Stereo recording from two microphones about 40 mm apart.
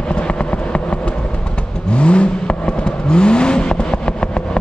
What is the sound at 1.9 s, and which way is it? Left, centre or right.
Vehicle, left.